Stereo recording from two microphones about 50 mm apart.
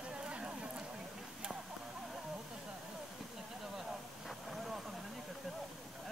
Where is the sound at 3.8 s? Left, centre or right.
Centre.